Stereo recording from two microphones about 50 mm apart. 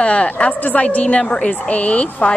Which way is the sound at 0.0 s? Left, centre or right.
Left.